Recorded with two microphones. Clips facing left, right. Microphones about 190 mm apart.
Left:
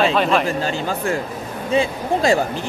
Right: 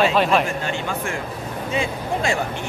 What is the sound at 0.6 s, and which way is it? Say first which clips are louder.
Speech: left 3 dB; 35° left (ahead or behind).